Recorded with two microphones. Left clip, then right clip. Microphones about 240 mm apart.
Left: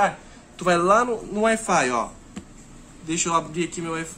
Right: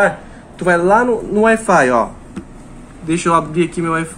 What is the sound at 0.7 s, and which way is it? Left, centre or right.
Speech, centre.